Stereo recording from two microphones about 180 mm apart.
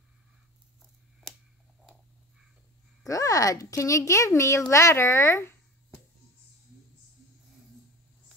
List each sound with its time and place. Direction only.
3.1 s speech: 20° left (ahead or behind)